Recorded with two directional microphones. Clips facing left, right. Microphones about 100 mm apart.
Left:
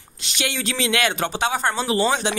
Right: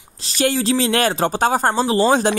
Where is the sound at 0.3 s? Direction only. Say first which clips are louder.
Right 9 dB; 40° right (ahead or behind).